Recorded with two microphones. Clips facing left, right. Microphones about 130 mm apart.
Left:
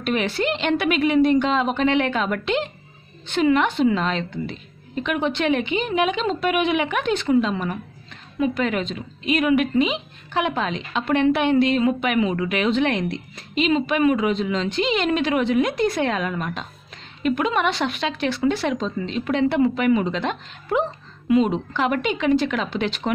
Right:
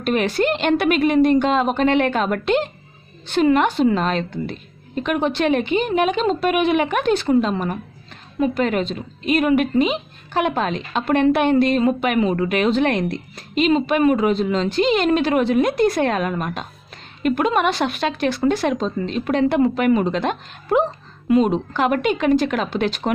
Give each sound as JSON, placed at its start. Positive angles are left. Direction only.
{"t": 0.0, "sound": "a woman's voice", "side_deg": -40}